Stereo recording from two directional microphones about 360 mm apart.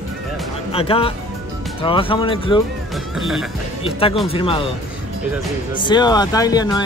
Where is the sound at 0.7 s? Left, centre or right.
Centre.